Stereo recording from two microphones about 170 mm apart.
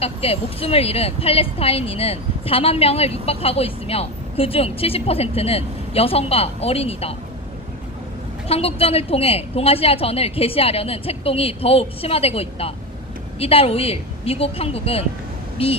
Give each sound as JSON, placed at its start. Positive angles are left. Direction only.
{"t": 0.0, "sound": "speech", "side_deg": 35}
{"t": 8.5, "sound": "speech", "side_deg": 35}